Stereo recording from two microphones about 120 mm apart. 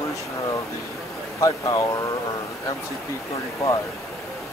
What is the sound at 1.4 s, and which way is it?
Speech, 30° left (ahead or behind).